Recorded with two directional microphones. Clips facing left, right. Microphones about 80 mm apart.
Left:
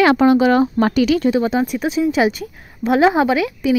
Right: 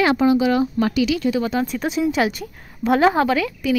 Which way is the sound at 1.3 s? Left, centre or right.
Left.